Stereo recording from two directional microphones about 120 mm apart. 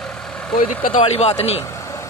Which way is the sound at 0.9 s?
60° left (ahead or behind).